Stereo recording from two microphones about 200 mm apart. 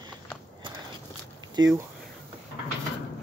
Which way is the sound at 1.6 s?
20° right (ahead or behind).